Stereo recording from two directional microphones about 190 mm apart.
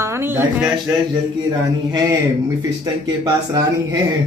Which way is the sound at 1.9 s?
20° right (ahead or behind).